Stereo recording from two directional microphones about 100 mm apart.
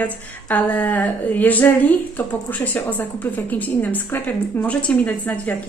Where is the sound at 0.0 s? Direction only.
15° left (ahead or behind).